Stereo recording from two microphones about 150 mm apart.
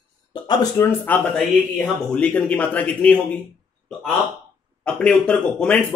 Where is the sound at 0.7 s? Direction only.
10° left (ahead or behind).